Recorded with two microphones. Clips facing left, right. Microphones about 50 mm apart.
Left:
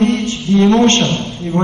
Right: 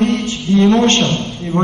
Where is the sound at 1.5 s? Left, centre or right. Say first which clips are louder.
Even; right.